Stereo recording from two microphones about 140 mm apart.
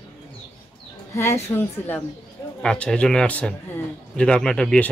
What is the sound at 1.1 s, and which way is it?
Speech, 20° left (ahead or behind).